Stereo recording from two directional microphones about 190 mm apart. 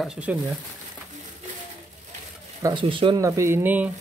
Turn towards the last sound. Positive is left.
turn(degrees=-10)  # may be behind; listen again after turning